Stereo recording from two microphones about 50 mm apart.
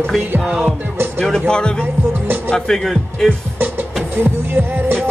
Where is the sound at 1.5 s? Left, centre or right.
Centre.